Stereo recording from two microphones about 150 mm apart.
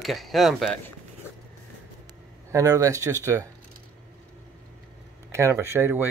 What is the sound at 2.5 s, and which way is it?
Speech, 20° right (ahead or behind).